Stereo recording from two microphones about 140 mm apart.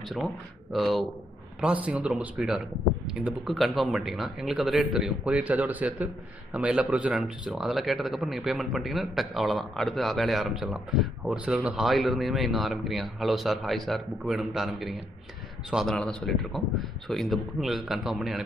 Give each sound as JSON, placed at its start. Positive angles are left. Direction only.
{"t": 0.1, "sound": "speech", "side_deg": 0}